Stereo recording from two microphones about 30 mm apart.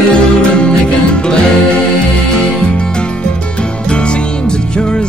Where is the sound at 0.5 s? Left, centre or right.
Left.